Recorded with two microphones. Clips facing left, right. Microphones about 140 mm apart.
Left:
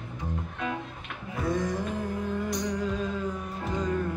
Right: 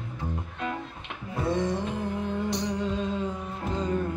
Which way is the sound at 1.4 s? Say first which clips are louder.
Right 2 dB; 25° right (ahead or behind).